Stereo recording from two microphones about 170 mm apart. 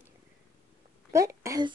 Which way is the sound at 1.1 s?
20° right (ahead or behind).